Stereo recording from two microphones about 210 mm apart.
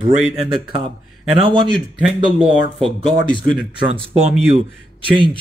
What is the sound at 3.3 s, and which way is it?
Speech, 25° right (ahead or behind).